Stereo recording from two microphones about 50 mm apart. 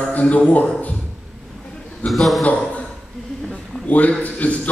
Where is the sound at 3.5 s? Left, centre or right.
Left.